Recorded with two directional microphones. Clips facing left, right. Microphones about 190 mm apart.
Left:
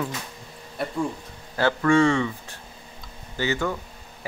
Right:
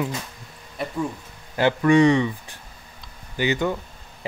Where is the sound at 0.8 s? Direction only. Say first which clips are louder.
Even; centre (ahead or behind).